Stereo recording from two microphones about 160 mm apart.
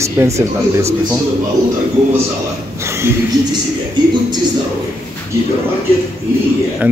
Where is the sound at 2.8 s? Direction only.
15° right (ahead or behind).